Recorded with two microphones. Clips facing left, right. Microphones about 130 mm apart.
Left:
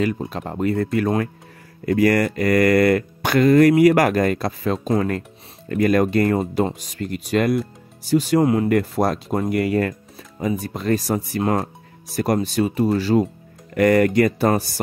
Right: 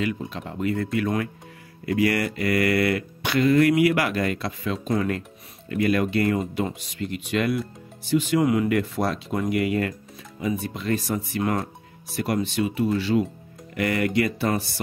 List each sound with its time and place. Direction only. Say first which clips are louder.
0.0 s speech: left 5 dB; 40° left (ahead or behind)